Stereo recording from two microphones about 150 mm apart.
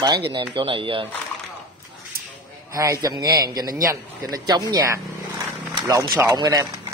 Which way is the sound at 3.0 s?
25° right (ahead or behind).